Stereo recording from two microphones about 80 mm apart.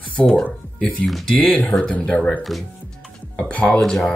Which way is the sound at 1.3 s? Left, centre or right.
Centre.